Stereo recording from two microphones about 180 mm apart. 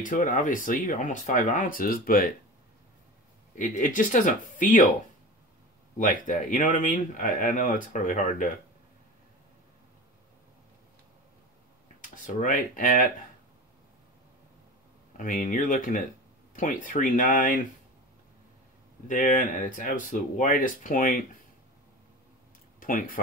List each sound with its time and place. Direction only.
0.0 s speech: 50° left (ahead or behind)
3.5 s speech: 45° left (ahead or behind)
5.9 s speech: 50° left (ahead or behind)
12.0 s speech: 45° left (ahead or behind)
15.1 s speech: 50° left (ahead or behind)
19.0 s speech: 45° left (ahead or behind)
22.8 s speech: 50° left (ahead or behind)